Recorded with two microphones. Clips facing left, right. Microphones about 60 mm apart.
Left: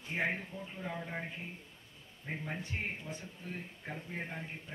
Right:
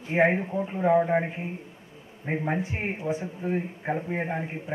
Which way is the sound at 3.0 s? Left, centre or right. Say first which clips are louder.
Right 16 dB; right.